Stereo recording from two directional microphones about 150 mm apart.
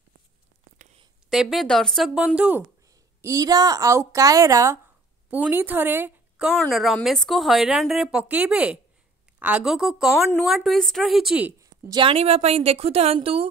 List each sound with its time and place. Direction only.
1.3 s a woman's voice: centre (ahead or behind)
3.2 s a woman's voice: 20° right (ahead or behind); by 11.5 s 5° right (ahead or behind)
11.9 s a woman's voice: 35° right (ahead or behind)